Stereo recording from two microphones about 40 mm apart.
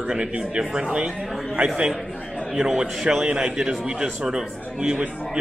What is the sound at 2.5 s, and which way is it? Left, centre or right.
A man's voice, centre.